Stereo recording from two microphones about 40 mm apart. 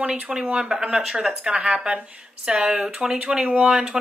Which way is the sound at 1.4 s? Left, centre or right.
Right.